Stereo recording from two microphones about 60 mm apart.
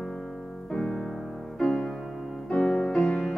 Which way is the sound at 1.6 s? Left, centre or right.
Centre.